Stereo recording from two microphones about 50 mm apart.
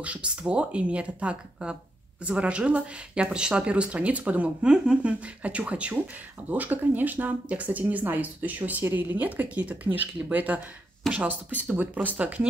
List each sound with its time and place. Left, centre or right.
0.0 s speech: right
6.5 s speech: right